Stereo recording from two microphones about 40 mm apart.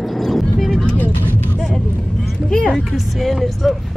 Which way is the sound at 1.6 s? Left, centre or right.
Centre.